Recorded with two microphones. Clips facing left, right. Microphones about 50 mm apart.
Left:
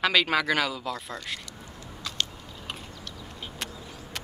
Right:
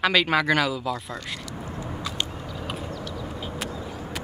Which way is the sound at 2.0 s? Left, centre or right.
Centre.